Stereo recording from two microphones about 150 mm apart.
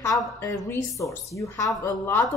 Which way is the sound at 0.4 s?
20° left (ahead or behind).